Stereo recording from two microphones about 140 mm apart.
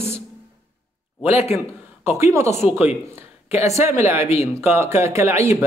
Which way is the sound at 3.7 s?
20° right (ahead or behind).